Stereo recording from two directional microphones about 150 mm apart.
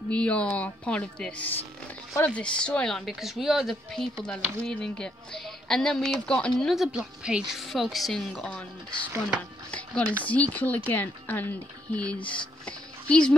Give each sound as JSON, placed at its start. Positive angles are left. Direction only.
{"t": 0.1, "sound": "a woman's voice", "side_deg": 5}
{"t": 9.7, "sound": "speech", "side_deg": 10}